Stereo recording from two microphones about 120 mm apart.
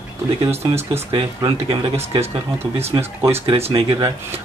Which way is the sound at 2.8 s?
20° right (ahead or behind).